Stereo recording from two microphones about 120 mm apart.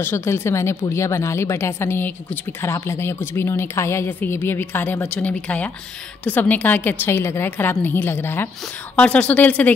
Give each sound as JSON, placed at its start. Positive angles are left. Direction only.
{"t": 0.0, "sound": "a woman's voice", "side_deg": 20}